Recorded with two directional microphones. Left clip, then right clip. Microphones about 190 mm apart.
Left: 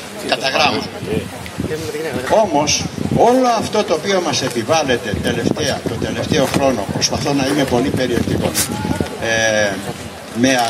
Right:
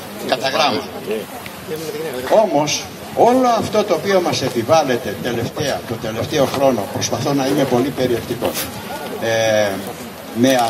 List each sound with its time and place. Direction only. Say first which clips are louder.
0.3 s a man's voice: left 1 dB; 15° right (ahead or behind)
2.3 s a man's voice: even; 15° right (ahead or behind)
9.2 s a man's voice: even; 15° right (ahead or behind)